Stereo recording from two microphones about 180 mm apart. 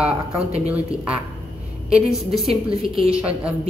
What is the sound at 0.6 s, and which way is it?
Speech, 5° right (ahead or behind).